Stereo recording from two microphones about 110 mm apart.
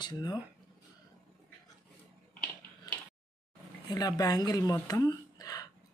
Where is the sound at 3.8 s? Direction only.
35° left (ahead or behind).